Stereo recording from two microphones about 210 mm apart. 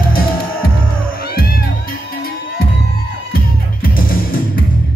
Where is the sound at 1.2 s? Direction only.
45° left (ahead or behind).